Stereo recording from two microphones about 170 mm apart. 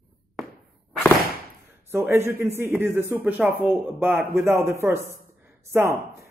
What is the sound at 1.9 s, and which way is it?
A woman's voice, 15° right (ahead or behind).